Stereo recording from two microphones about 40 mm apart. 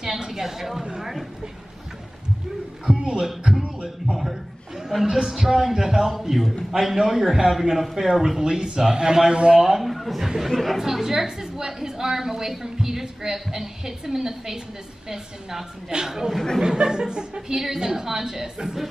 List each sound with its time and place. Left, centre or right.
0.0 s a sound: centre
2.9 s a sound: right
3.6 s music: right
5.0 s a woman's voice: centre
8.4 s a man's voice: centre
9.6 s a man's voice: centre
10.9 s a woman's voice: centre